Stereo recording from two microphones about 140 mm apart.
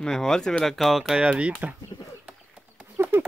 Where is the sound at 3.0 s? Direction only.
15° right (ahead or behind).